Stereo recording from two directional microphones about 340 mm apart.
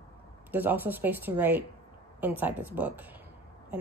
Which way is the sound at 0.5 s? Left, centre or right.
Centre.